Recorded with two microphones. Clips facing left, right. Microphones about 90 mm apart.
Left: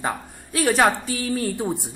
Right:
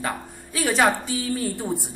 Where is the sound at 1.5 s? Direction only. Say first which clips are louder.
Left 2 dB; 15° left (ahead or behind).